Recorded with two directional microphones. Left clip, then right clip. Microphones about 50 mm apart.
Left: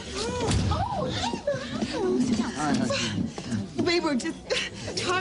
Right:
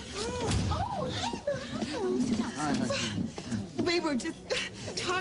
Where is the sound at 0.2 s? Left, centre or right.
Left.